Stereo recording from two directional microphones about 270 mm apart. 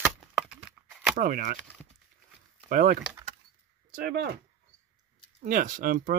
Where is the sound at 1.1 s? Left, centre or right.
Right.